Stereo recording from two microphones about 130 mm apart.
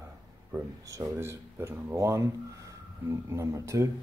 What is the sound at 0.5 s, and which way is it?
Speech, 20° right (ahead or behind).